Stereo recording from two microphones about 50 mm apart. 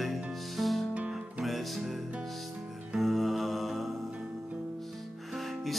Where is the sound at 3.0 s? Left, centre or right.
Centre.